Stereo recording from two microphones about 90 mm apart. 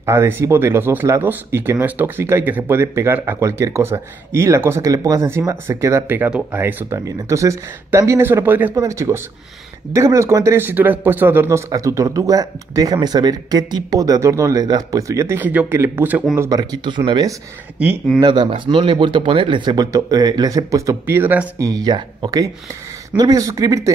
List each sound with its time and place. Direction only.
0.0 s speech: 30° right (ahead or behind)
6.0 s speech: 20° right (ahead or behind)
7.1 s speech: 35° right (ahead or behind); by 8.7 s 20° right (ahead or behind)
8.7 s speech: 35° right (ahead or behind)
11.7 s speech: 35° right (ahead or behind)
15.3 s speech: 20° right (ahead or behind)
16.4 s speech: 50° right (ahead or behind)
19.9 s speech: 40° right (ahead or behind)
21.1 s speech: 20° right (ahead or behind)
21.5 s speech: 40° right (ahead or behind)
23.1 s speech: 45° right (ahead or behind)